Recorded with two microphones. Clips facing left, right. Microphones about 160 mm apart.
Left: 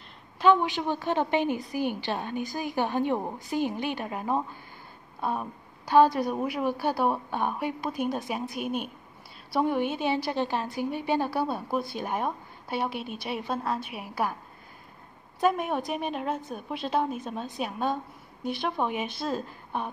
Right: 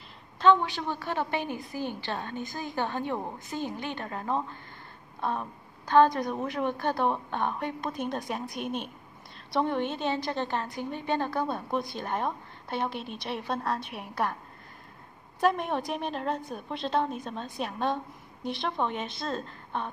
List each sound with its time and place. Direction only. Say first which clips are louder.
0.4 s a woman's voice: left 1 dB; 15° left (ahead or behind)
15.4 s a woman's voice: left 1 dB; 5° left (ahead or behind)